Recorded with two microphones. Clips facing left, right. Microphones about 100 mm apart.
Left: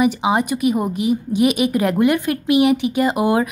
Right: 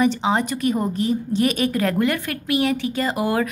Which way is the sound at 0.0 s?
15° left (ahead or behind).